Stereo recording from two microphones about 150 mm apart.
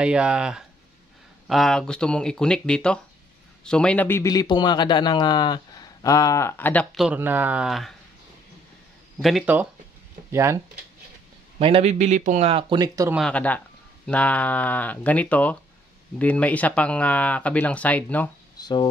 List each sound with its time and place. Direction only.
0.0 s a man's voice: 5° right (ahead or behind); by 6.9 s 10° left (ahead or behind)
7.0 s speech: 10° right (ahead or behind)
9.5 s speech: 10° right (ahead or behind)
11.6 s speech: 45° right (ahead or behind); by 13.1 s 25° right (ahead or behind)
13.2 s speech: 10° left (ahead or behind)
18.6 s a sound: 30° left (ahead or behind)